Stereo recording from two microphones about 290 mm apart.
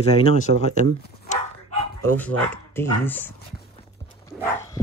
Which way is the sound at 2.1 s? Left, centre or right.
Centre.